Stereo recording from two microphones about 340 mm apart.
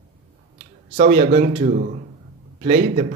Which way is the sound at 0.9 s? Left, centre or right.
Right.